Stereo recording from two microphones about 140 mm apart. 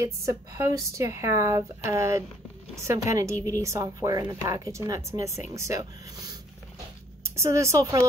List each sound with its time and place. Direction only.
0.0 s a woman's voice: 20° right (ahead or behind)
7.3 s a woman's voice: 20° right (ahead or behind)